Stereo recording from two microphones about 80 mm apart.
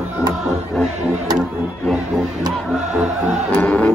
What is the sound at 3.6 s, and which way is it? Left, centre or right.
Music, centre.